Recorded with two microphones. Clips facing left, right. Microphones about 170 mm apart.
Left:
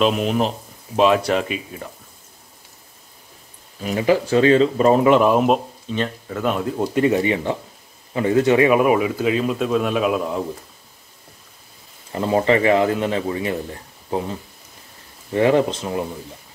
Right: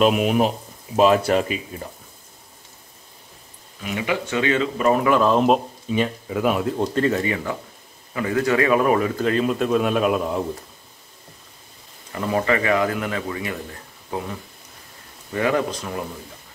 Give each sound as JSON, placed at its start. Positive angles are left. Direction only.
{"t": 0.0, "sound": "speech", "side_deg": -10}
{"t": 0.9, "sound": "speech", "side_deg": 0}
{"t": 3.8, "sound": "speech", "side_deg": 35}
{"t": 5.3, "sound": "speech", "side_deg": 5}
{"t": 5.9, "sound": "speech", "side_deg": -10}
{"t": 12.1, "sound": "speech", "side_deg": 25}
{"t": 15.3, "sound": "speech", "side_deg": 25}